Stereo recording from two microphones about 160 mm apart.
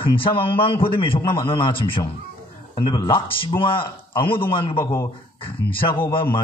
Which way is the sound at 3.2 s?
35° left (ahead or behind).